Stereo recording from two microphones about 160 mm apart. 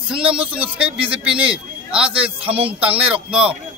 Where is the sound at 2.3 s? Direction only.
35° right (ahead or behind).